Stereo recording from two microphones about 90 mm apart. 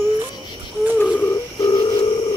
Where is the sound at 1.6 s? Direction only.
40° left (ahead or behind).